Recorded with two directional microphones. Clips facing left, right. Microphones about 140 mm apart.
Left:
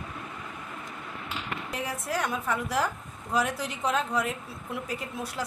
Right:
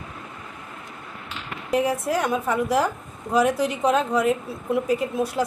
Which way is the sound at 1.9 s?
15° right (ahead or behind).